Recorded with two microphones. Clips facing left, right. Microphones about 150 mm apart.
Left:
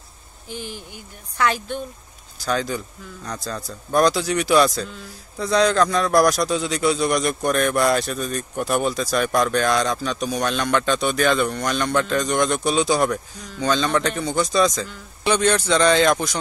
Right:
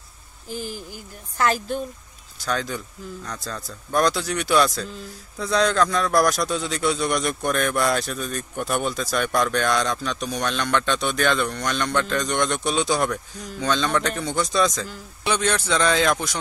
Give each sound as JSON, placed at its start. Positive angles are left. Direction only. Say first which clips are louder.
{"t": 0.5, "sound": "speech", "louder": "right 2 dB", "side_deg": -40}
{"t": 2.3, "sound": "a man's voice", "louder": "left 3 dB", "side_deg": 0}